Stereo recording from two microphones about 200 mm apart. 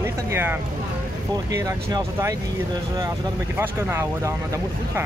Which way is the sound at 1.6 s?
15° right (ahead or behind).